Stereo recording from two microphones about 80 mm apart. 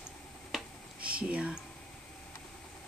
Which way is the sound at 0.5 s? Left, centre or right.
Centre.